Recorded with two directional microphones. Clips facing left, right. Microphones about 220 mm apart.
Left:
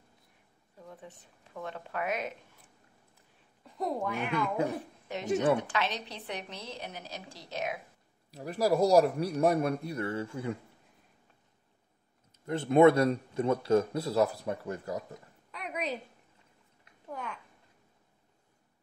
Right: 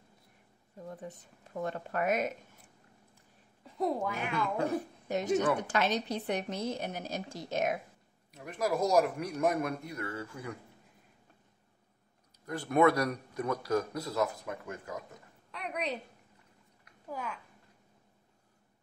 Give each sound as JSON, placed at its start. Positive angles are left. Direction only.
{"t": 0.8, "sound": "a woman's voice", "side_deg": -40}
{"t": 3.6, "sound": "speech", "side_deg": 0}
{"t": 5.0, "sound": "a woman's voice", "side_deg": -45}
{"t": 8.3, "sound": "a man's voice", "side_deg": 35}
{"t": 12.4, "sound": "a man's voice", "side_deg": 25}
{"t": 15.5, "sound": "a sound", "side_deg": 0}
{"t": 17.1, "sound": "speech", "side_deg": 0}